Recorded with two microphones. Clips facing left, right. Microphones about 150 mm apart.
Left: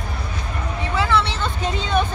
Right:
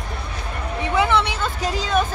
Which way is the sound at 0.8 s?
20° right (ahead or behind).